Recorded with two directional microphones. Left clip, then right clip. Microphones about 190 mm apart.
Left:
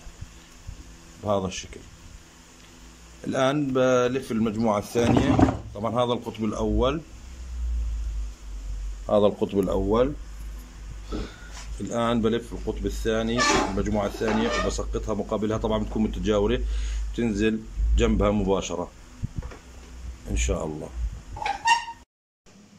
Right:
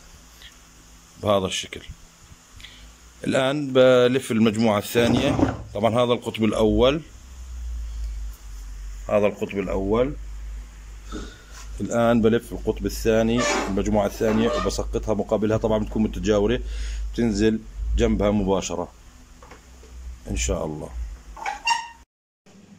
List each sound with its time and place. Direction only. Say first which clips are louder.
1.2 s speech: right 5 dB; 5° right (ahead or behind)
3.2 s speech: right 2 dB; centre (ahead or behind)
9.1 s speech: even; 25° left (ahead or behind)
9.7 s speech: right 2 dB; 10° left (ahead or behind)
11.8 s speech: right 5 dB; centre (ahead or behind)
20.2 s speech: right 2 dB; centre (ahead or behind)